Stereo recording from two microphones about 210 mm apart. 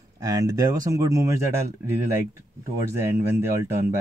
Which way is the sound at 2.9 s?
10° right (ahead or behind).